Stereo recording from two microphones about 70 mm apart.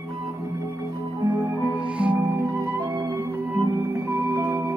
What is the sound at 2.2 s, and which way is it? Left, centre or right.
Music, right.